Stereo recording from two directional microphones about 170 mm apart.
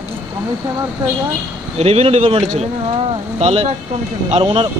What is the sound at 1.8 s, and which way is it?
Speech, 35° right (ahead or behind).